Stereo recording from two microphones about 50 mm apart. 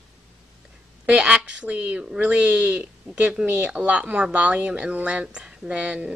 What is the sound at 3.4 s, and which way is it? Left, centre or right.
Speech, right.